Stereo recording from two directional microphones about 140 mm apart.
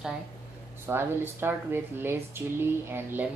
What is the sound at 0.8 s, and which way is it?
Speech, 15° right (ahead or behind).